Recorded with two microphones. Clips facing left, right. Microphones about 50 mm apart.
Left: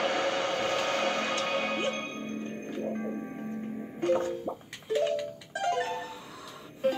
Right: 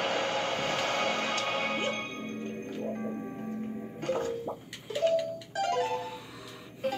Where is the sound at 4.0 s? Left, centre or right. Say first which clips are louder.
Left 5 dB; left.